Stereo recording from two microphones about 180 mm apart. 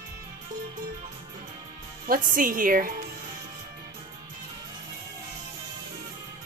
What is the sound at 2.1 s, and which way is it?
Speech, 50° right (ahead or behind).